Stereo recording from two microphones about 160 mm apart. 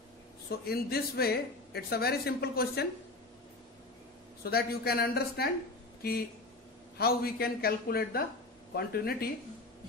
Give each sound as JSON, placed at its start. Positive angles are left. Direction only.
{"t": 0.5, "sound": "speech", "side_deg": 75}
{"t": 4.4, "sound": "speech", "side_deg": 75}
{"t": 7.0, "sound": "speech", "side_deg": 75}